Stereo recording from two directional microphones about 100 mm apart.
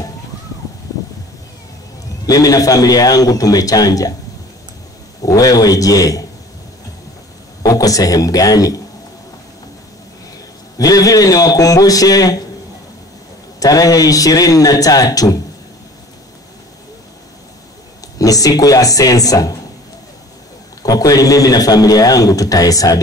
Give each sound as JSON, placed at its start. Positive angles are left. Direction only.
{"t": 2.2, "sound": "a man's voice", "side_deg": 35}
{"t": 5.2, "sound": "a man's voice", "side_deg": 35}
{"t": 7.6, "sound": "a man's voice", "side_deg": 35}
{"t": 10.8, "sound": "a man's voice", "side_deg": 35}
{"t": 13.6, "sound": "a man's voice", "side_deg": 35}
{"t": 18.2, "sound": "a man's voice", "side_deg": 35}
{"t": 20.8, "sound": "a man's voice", "side_deg": 35}